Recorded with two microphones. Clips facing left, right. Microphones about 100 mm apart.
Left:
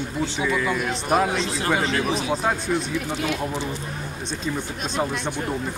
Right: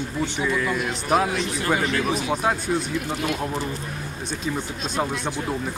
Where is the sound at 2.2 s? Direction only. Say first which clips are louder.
Even; centre (ahead or behind).